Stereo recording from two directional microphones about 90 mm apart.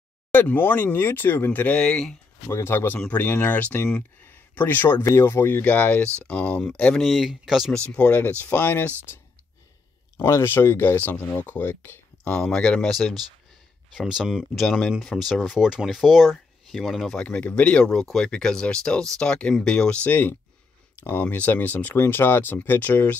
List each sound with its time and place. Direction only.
0.3 s speech: 20° left (ahead or behind)
2.4 s speech: 25° left (ahead or behind); by 7.1 s 10° left (ahead or behind)
7.1 s speech: 5° right (ahead or behind)
7.7 s speech: 15° left (ahead or behind)
12.3 s speech: 5° left (ahead or behind)
13.9 s speech: 5° right (ahead or behind); by 23.1 s 20° left (ahead or behind)